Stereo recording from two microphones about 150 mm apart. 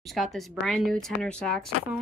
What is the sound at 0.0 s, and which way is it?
Speech, centre (ahead or behind).